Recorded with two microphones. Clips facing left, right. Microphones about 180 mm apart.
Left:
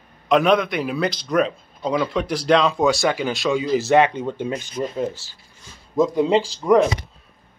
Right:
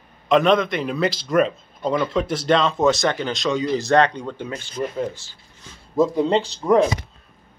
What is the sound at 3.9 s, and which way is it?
Speech, 15° left (ahead or behind).